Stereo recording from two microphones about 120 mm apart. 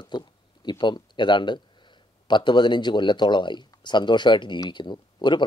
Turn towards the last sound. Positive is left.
turn(degrees=40)  # may be behind; listen again after turning